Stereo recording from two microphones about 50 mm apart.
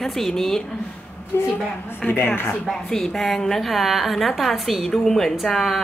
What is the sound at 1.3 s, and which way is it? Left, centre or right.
A woman's voice, left.